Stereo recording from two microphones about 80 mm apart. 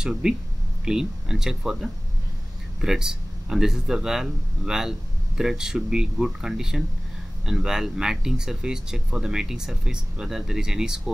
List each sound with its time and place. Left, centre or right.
0.0 s speech: centre